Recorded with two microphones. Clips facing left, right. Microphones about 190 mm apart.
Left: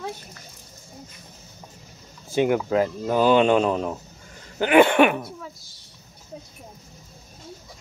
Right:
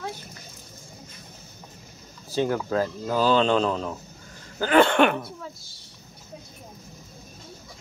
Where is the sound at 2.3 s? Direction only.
15° left (ahead or behind).